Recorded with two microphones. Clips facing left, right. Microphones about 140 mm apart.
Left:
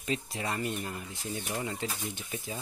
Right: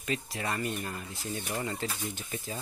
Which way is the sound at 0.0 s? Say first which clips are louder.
Even; 25° left (ahead or behind).